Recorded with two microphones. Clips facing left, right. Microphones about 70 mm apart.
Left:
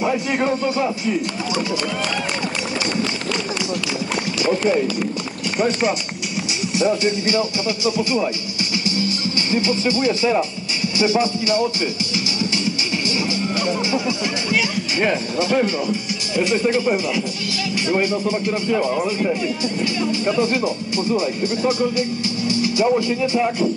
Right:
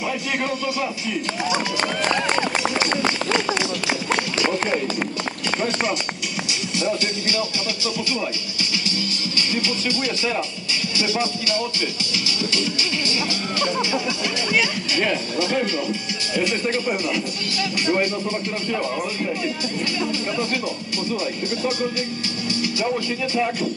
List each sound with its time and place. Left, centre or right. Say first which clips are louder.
0.0 s music: left 5 dB; left
6.8 s music: left 6 dB; left
9.5 s music: left 6 dB; left
14.5 s music: even; left
16.3 s speech: left 4 dB; centre
22.6 s music: left 6 dB; centre